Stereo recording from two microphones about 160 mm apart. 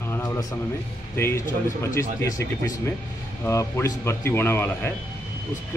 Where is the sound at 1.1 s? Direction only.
15° left (ahead or behind).